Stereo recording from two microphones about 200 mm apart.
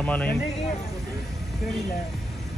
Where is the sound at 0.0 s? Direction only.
5° left (ahead or behind).